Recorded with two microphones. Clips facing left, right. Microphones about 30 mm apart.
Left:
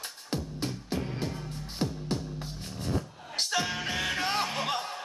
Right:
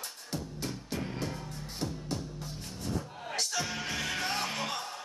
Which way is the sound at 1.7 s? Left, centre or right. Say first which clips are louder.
Left 4 dB; left.